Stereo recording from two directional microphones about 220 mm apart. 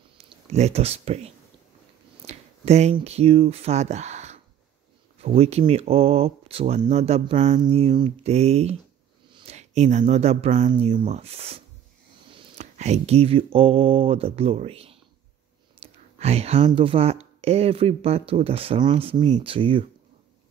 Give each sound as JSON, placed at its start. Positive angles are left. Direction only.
{"t": 0.5, "sound": "speech", "side_deg": -30}